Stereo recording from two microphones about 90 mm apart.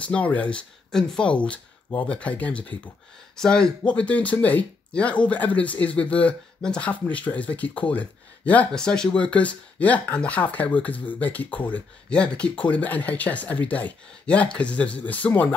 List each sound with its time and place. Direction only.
0.0 s speech: 15° left (ahead or behind)